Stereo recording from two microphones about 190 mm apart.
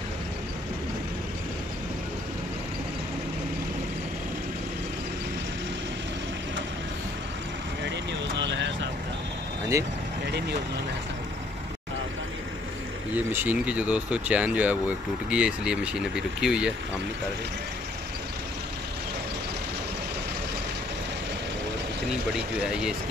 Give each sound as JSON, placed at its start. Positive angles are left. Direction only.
{"t": 7.8, "sound": "vehicle", "side_deg": -65}
{"t": 9.7, "sound": "speech", "side_deg": -15}
{"t": 13.1, "sound": "speech", "side_deg": -10}